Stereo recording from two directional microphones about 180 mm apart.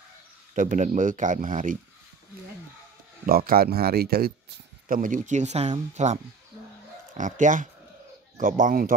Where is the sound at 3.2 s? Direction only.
55° right (ahead or behind).